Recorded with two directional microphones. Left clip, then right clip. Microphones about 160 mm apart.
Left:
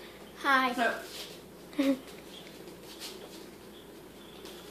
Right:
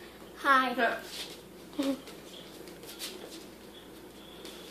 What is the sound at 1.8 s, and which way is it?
Speech, 25° left (ahead or behind).